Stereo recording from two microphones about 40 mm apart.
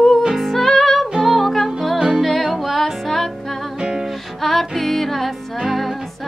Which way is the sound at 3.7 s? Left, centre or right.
Centre.